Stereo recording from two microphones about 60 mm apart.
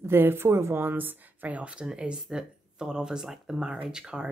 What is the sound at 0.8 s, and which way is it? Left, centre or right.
Speech, right.